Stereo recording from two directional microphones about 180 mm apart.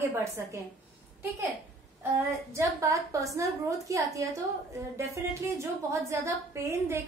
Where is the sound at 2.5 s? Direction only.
15° right (ahead or behind).